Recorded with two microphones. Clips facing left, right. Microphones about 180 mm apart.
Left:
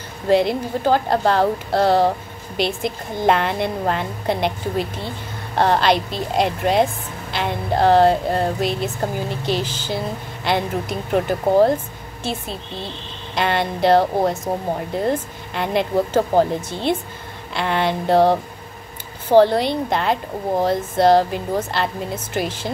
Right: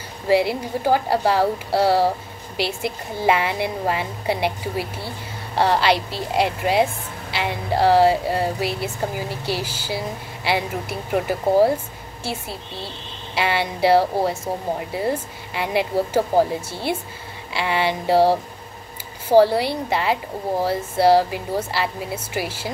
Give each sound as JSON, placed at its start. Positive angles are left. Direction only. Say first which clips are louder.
{"t": 0.3, "sound": "speech", "louder": "left 2 dB", "side_deg": -10}
{"t": 5.6, "sound": "a woman's voice", "louder": "left 1 dB", "side_deg": 55}
{"t": 6.3, "sound": "speech", "louder": "left 1 dB", "side_deg": -10}